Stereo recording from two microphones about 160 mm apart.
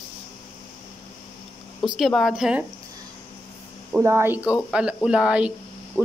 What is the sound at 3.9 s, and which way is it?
A woman's voice, 15° right (ahead or behind).